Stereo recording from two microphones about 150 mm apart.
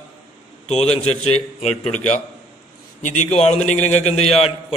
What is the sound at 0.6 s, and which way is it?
Speech, 45° left (ahead or behind).